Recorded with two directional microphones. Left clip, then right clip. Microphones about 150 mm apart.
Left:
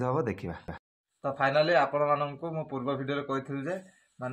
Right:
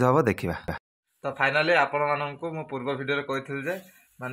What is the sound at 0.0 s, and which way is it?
Speech, 35° right (ahead or behind).